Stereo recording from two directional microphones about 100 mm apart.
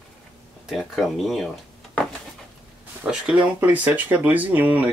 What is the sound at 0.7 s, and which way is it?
Speech, centre (ahead or behind).